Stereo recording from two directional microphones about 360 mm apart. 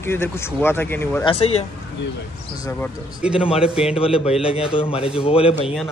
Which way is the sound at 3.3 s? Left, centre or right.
Centre.